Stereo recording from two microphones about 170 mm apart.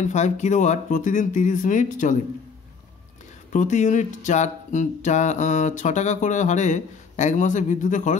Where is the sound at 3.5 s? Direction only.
45° left (ahead or behind).